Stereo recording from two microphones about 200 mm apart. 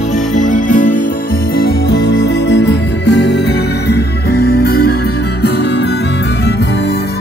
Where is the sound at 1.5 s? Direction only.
55° left (ahead or behind).